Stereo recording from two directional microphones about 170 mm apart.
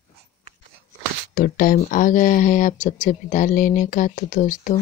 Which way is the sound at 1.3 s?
55° left (ahead or behind).